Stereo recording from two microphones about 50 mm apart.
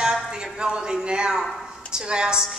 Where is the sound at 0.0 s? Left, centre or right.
Centre.